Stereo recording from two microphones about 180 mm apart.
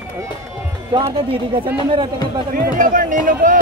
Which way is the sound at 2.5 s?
50° right (ahead or behind).